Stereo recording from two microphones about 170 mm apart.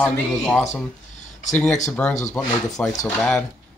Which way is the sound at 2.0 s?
10° left (ahead or behind).